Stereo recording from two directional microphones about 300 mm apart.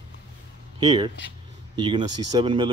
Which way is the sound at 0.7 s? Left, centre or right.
Centre.